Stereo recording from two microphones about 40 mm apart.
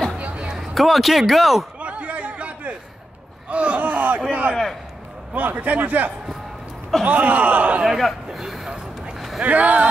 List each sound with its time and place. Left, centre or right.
0.2 s music: right
0.7 s speech: centre
1.8 s chatter: right
3.4 s a man's voice: right
8.0 s a sound: centre
9.4 s speech: right